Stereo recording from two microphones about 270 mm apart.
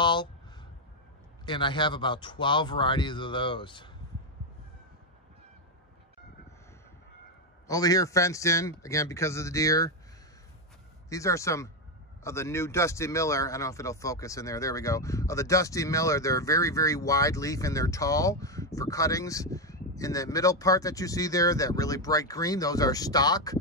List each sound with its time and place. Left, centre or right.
0.0 s a sound: centre
1.4 s speech: centre
7.6 s speech: centre
11.1 s speech: centre